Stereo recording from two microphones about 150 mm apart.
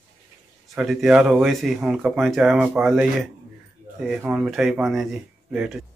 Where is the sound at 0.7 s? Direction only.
5° right (ahead or behind).